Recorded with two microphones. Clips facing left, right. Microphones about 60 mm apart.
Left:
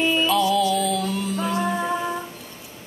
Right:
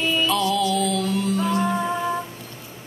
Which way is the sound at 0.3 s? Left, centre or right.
Centre.